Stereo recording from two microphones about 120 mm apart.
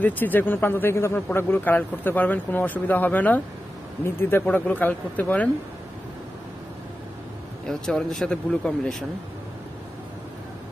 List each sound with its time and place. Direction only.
0.0 s a man's voice: 15° left (ahead or behind)
7.6 s speech: 5° left (ahead or behind)